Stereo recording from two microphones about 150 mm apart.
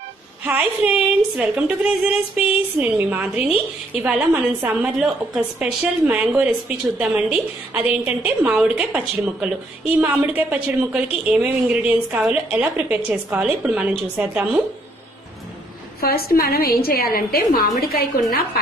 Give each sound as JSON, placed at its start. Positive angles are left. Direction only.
{"t": 0.4, "sound": "a woman's voice", "side_deg": -10}
{"t": 16.0, "sound": "a woman's voice", "side_deg": 90}